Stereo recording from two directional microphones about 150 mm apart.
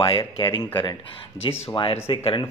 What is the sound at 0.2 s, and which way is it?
A man's voice, 30° left (ahead or behind).